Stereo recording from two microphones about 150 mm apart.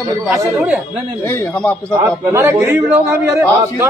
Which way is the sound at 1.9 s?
20° right (ahead or behind).